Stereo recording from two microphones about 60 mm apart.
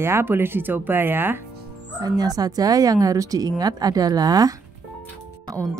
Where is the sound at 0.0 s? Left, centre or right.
Right.